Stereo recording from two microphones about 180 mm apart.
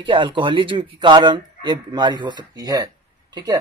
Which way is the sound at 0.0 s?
25° right (ahead or behind).